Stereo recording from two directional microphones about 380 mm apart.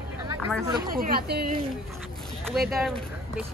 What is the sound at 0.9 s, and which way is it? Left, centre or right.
Speech, right.